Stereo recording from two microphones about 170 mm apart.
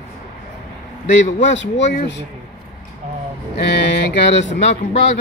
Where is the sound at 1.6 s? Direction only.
90° left.